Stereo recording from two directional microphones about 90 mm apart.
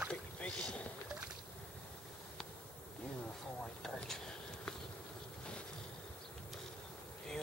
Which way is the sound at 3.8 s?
5° left (ahead or behind).